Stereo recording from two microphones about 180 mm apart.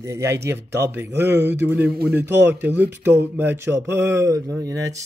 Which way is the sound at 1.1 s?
70° right (ahead or behind).